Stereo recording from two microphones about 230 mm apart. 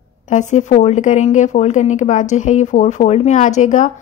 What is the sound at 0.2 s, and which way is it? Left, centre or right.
A woman's voice, left.